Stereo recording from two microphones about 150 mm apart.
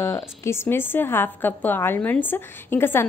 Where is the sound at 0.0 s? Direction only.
20° left (ahead or behind).